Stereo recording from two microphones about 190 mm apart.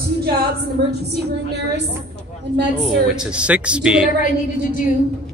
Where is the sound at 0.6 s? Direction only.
60° right (ahead or behind).